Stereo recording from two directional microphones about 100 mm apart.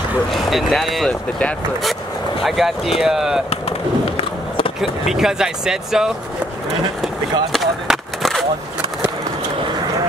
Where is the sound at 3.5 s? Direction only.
80° left.